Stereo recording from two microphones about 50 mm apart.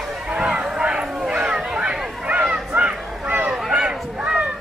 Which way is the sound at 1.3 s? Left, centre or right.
Right.